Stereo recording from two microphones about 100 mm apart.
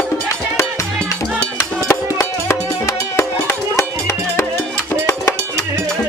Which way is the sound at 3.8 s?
25° left (ahead or behind).